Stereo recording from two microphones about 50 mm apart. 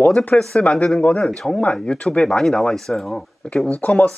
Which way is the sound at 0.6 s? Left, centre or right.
Left.